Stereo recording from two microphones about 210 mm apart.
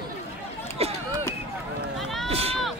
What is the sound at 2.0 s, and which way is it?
Run, centre (ahead or behind).